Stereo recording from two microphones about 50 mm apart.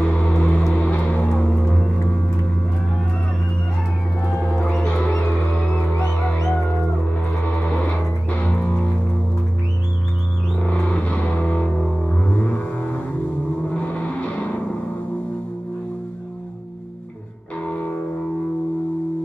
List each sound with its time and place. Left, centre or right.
0.0 s music: left
0.7 s vehicle: left
4.8 s music: centre
7.1 s music: left
8.5 s music: centre
10.7 s vehicle: left
13.7 s music: left
17.6 s music: left